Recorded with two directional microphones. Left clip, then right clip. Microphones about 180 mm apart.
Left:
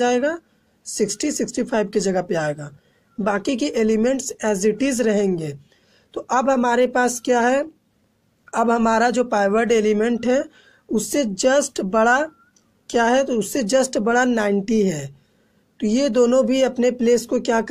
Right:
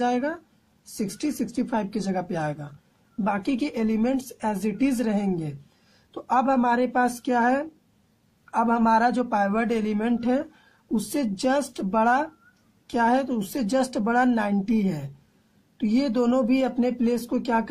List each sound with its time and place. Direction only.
0.0 s a man's voice: 25° left (ahead or behind)